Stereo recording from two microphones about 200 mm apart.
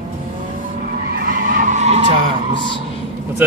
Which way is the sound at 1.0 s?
50° right (ahead or behind).